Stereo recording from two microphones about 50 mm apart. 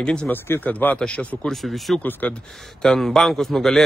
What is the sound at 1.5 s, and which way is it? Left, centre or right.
Speech, centre.